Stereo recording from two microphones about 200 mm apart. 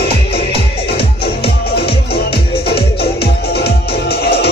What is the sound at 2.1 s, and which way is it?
Music, 55° left (ahead or behind).